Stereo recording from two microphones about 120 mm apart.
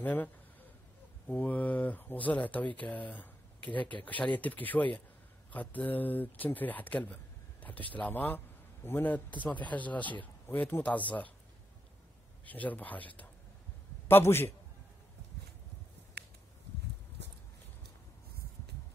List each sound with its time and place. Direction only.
0.0 s speech: 15° left (ahead or behind)
12.4 s a man's voice: 15° left (ahead or behind)